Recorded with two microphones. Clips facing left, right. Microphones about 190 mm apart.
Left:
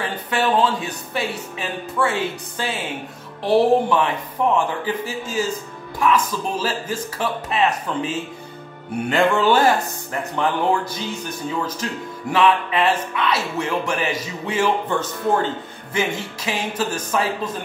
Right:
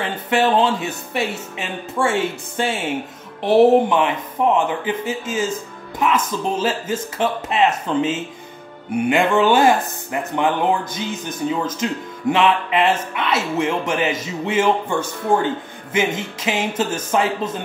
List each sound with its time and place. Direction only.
0.0 s speech: 25° right (ahead or behind)